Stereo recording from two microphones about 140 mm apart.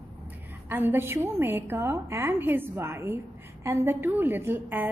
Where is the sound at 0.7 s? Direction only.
15° right (ahead or behind).